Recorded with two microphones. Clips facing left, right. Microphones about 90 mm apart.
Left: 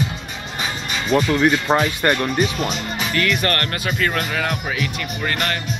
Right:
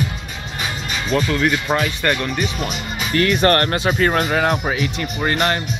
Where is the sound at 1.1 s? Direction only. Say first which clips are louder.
Left 2 dB; 15° left (ahead or behind).